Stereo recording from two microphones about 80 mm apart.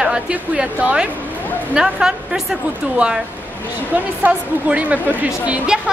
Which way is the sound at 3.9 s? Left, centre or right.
Centre.